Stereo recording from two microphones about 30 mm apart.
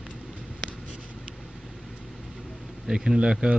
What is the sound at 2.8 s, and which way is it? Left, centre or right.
Speech, right.